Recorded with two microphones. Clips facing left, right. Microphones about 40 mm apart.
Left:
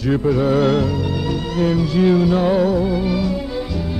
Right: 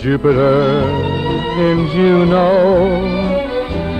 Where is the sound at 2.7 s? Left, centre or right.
Right.